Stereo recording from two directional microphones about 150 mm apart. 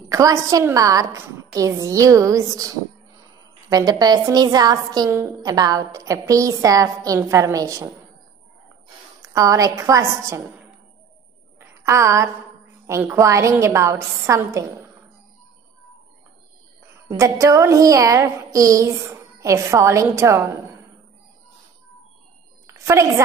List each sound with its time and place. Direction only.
0.1 s a woman's voice: 20° right (ahead or behind)
9.3 s a woman's voice: 25° right (ahead or behind)
11.6 s a sound: 20° right (ahead or behind)
12.8 s a woman's voice: 20° right (ahead or behind)
17.1 s a woman's voice: 20° right (ahead or behind)
22.8 s a woman's voice: 20° right (ahead or behind)